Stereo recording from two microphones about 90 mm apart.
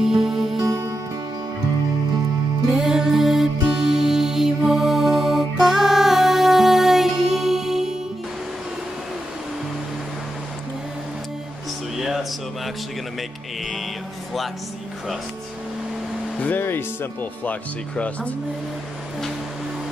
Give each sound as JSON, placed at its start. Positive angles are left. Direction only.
{"t": 0.0, "sound": "music", "side_deg": -5}
{"t": 0.6, "sound": "music", "side_deg": -40}
{"t": 2.7, "sound": "music", "side_deg": -5}
{"t": 12.0, "sound": "a sound", "side_deg": -5}
{"t": 16.3, "sound": "speech", "side_deg": 20}